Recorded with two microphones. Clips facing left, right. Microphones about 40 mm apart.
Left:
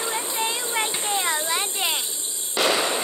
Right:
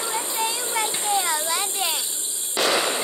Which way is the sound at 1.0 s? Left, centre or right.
Left.